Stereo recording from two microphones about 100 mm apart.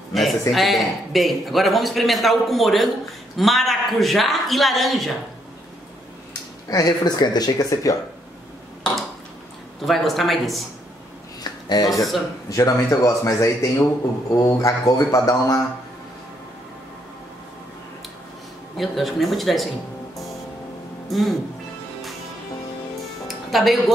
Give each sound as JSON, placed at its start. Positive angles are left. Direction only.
{"t": 0.1, "sound": "a man's voice", "side_deg": 0}
{"t": 6.7, "sound": "speech", "side_deg": 40}
{"t": 9.8, "sound": "a man's voice", "side_deg": 0}
{"t": 11.7, "sound": "speech", "side_deg": 40}
{"t": 18.8, "sound": "a man's voice", "side_deg": 0}
{"t": 21.1, "sound": "a man's voice", "side_deg": 0}
{"t": 23.2, "sound": "music", "side_deg": 0}